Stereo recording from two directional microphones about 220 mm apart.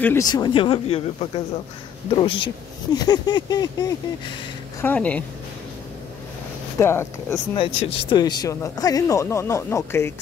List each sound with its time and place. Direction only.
0.0 s speech: 15° left (ahead or behind)
4.8 s speech: 5° left (ahead or behind)
6.8 s speech: 10° left (ahead or behind)
7.5 s speech: 25° left (ahead or behind)